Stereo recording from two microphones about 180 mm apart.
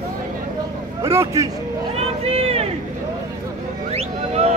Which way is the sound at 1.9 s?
35° right (ahead or behind).